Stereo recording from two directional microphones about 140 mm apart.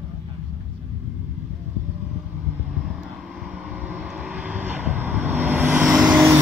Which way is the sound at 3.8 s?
10° right (ahead or behind).